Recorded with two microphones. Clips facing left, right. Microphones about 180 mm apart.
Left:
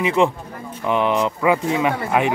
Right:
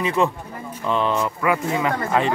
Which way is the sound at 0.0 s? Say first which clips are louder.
Left 3 dB; 15° left (ahead or behind).